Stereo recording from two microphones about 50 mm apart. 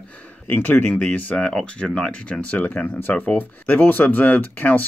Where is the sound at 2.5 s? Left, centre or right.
Left.